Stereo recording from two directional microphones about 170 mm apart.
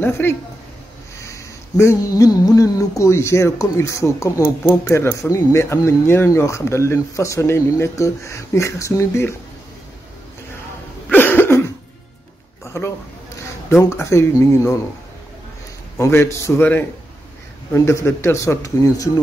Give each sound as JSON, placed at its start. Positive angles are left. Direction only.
{"t": 0.0, "sound": "speech", "side_deg": 10}
{"t": 11.1, "sound": "cough", "side_deg": 10}
{"t": 12.6, "sound": "a sound", "side_deg": 15}
{"t": 13.7, "sound": "speech", "side_deg": 15}
{"t": 16.0, "sound": "speech", "side_deg": 15}